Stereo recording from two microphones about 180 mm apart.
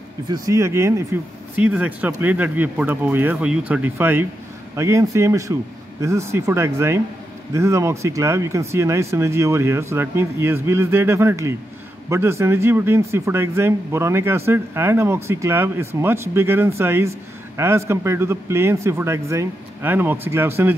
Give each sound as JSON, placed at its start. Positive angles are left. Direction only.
{"t": 0.3, "sound": "speech", "side_deg": -15}